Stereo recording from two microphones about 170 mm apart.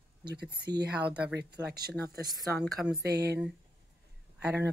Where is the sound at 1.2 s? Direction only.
75° right (ahead or behind).